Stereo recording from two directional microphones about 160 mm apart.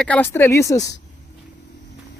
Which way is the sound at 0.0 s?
10° left (ahead or behind).